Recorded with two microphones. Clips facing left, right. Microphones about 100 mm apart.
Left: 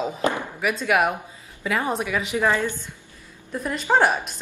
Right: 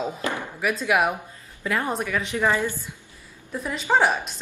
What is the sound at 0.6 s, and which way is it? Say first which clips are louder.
A woman's voice: even; centre (ahead or behind).